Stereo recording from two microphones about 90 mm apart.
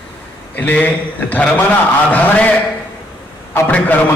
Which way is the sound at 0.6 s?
15° left (ahead or behind).